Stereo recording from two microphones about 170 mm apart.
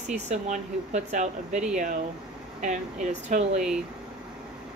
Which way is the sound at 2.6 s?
45° right (ahead or behind).